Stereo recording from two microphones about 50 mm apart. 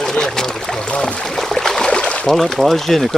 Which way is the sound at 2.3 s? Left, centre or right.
Centre.